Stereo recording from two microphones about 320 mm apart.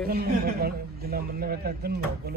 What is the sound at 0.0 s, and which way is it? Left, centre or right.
A man's voice, right.